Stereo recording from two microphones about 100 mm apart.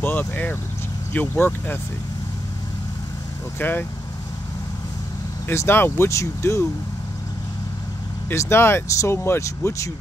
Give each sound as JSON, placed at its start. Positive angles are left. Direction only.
{"t": 0.0, "sound": "speech", "side_deg": 20}
{"t": 3.5, "sound": "speech", "side_deg": 20}
{"t": 5.5, "sound": "speech", "side_deg": 25}
{"t": 8.3, "sound": "speech", "side_deg": 25}